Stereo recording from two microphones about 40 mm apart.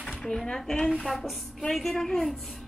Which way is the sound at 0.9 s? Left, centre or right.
Centre.